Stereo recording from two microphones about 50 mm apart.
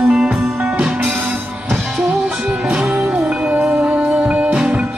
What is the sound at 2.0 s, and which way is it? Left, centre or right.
Music, centre.